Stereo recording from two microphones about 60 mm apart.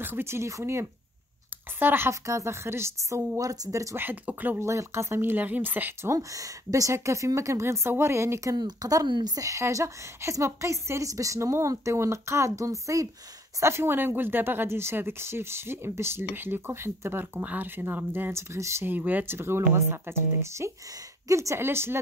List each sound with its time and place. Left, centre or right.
0.0 s speech: right
1.8 s speech: right
2.2 s a woman's voice: right
3.9 s speech: right
4.6 s speech: right
5.2 s speech: right
6.1 s a woman's voice: right
8.8 s a woman's voice: right
13.6 s speech: right
18.3 s speech: right
18.9 s speech: right
19.3 s a woman's voice: right
21.5 s speech: right